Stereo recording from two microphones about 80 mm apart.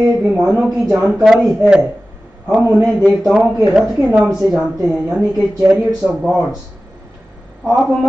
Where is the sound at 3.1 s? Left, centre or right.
Centre.